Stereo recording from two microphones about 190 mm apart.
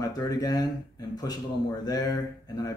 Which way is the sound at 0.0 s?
20° left (ahead or behind).